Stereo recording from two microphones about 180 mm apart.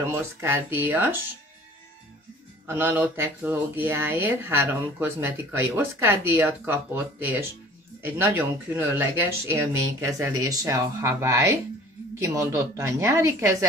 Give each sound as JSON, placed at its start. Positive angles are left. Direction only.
{"t": 0.1, "sound": "speech", "side_deg": -15}
{"t": 2.6, "sound": "speech", "side_deg": -10}